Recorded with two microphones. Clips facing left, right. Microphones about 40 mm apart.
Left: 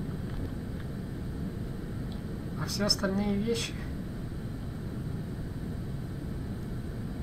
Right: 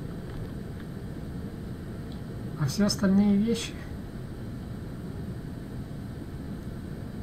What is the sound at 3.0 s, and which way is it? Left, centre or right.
Speech, centre.